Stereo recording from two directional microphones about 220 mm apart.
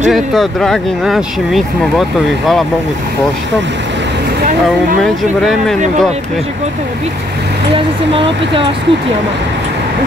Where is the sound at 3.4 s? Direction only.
55° right (ahead or behind).